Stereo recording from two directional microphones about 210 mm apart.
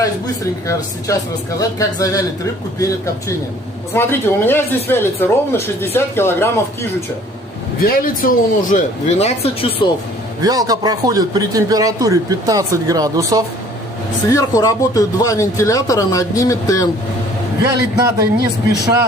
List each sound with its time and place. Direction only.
0.7 s speech: 15° left (ahead or behind)
3.9 s speech: 10° left (ahead or behind)
7.8 s speech: 45° left (ahead or behind); by 9.8 s 25° left (ahead or behind)
10.4 s a man's voice: 15° right (ahead or behind)
14.3 s speech: 15° left (ahead or behind)
17.6 s a man's voice: 15° right (ahead or behind)